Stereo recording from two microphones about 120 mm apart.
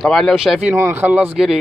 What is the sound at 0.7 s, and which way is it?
Speech, 15° right (ahead or behind).